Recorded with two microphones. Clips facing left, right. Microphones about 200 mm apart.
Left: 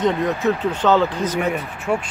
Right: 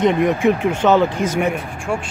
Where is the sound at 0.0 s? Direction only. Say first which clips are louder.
Right 4 dB; 15° right (ahead or behind).